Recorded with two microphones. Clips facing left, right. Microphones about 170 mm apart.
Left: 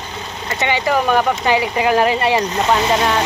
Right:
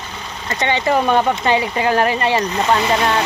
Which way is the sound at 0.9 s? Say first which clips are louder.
Right 1 dB; 25° right (ahead or behind).